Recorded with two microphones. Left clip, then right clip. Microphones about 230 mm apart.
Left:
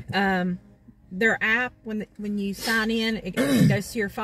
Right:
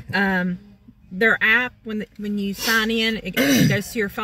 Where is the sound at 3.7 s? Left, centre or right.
Left.